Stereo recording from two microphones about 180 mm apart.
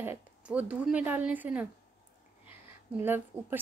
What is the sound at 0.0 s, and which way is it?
Speech, 10° right (ahead or behind).